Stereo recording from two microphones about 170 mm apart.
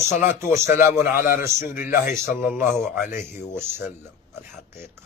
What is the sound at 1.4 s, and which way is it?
Speech, 15° right (ahead or behind).